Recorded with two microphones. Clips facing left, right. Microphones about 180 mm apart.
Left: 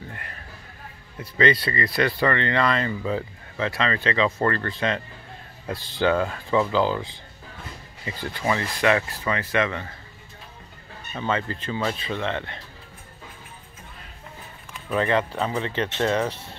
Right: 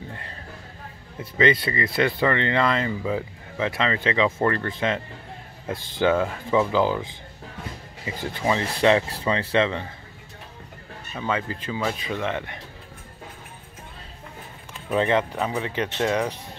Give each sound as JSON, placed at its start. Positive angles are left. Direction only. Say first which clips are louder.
{"t": 0.1, "sound": "a sound", "louder": "right 1 dB", "side_deg": -25}
{"t": 1.2, "sound": "speech", "louder": "right 1 dB", "side_deg": -20}
{"t": 11.1, "sound": "speech", "louder": "left 1 dB", "side_deg": -10}
{"t": 14.9, "sound": "speech", "louder": "right 1 dB", "side_deg": -20}